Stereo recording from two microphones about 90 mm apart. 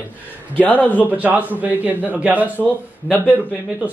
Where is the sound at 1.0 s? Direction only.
15° right (ahead or behind).